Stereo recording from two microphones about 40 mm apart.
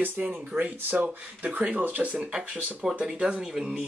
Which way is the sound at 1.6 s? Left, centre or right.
Right.